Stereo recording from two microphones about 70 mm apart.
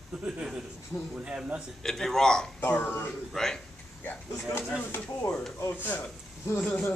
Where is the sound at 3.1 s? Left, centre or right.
Centre.